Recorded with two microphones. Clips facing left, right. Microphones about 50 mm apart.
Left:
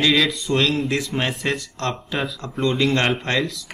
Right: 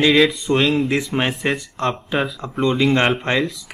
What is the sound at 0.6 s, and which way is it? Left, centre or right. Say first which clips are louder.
Speech: right 3 dB; centre.